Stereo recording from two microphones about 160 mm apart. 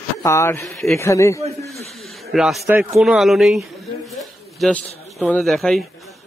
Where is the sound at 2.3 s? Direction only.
Centre (ahead or behind).